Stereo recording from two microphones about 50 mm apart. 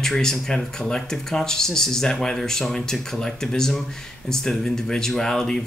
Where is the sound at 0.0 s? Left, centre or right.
Centre.